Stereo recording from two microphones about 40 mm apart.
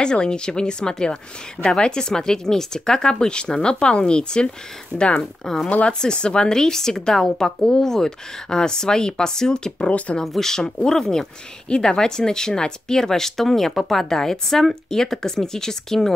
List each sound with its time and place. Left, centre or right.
0.0 s speech: left
5.4 s speech: centre
5.7 s speech: left
5.9 s speech: left
9.8 s speech: left
10.2 s speech: centre